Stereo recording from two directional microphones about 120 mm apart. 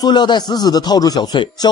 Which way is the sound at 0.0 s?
40° left (ahead or behind).